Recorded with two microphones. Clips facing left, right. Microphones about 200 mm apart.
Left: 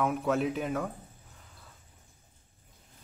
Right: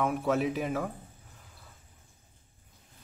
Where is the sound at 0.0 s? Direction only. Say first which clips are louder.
Even; centre (ahead or behind).